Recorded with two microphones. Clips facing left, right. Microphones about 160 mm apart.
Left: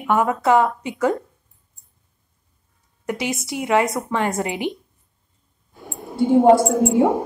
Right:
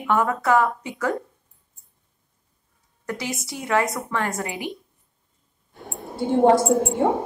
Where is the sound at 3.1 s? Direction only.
20° left (ahead or behind).